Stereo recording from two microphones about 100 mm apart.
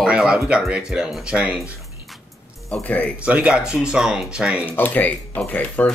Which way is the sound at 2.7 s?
15° left (ahead or behind).